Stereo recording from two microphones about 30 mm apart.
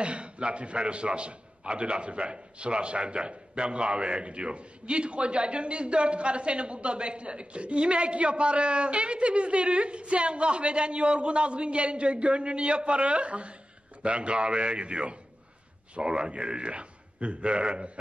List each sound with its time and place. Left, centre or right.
0.0 s a man's voice: right